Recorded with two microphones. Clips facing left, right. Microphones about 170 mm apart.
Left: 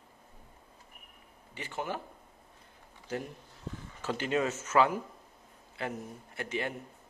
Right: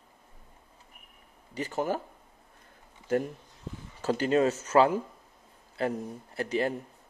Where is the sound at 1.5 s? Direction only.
40° right (ahead or behind).